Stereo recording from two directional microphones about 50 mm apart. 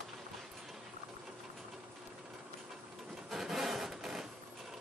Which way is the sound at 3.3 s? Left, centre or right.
Centre.